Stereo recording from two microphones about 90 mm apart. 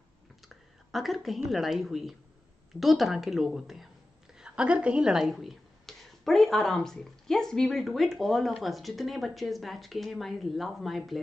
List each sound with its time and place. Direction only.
0.9 s a woman's voice: centre (ahead or behind)